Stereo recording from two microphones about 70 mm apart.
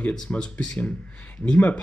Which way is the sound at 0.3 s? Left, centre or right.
Centre.